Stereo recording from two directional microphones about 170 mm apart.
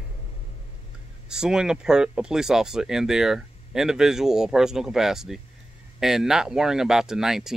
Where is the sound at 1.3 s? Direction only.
5° right (ahead or behind).